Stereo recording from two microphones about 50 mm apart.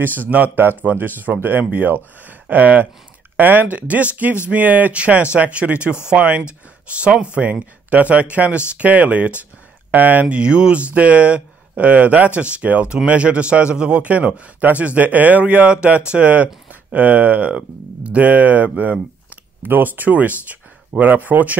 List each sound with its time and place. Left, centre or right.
0.0 s speech: right